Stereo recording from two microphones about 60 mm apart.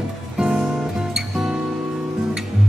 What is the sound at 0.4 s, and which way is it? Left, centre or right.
Music, centre.